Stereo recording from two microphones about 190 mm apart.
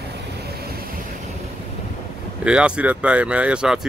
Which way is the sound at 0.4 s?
55° right (ahead or behind).